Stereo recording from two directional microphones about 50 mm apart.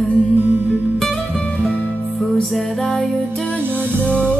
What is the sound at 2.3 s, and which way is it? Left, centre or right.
Music, centre.